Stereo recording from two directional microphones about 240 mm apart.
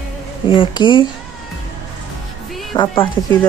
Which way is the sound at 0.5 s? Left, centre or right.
Centre.